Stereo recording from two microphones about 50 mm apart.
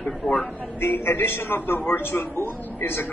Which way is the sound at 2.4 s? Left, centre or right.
Left.